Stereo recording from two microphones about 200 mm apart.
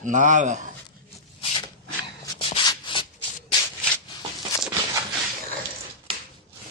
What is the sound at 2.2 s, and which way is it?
Rub, 25° left (ahead or behind).